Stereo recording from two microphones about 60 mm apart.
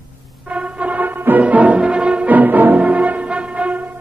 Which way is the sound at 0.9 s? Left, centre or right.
Right.